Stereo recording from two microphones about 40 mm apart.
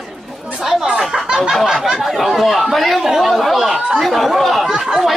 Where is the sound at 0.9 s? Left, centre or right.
Centre.